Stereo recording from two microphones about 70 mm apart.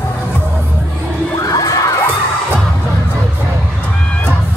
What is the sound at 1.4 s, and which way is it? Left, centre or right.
Children shouting, left.